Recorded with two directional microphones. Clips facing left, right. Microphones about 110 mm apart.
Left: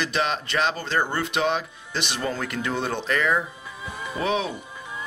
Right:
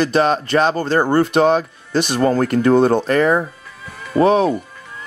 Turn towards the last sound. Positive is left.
turn(degrees=-45)  # may be behind; listen again after turning